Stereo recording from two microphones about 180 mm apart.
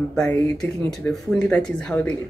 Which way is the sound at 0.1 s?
5° left (ahead or behind).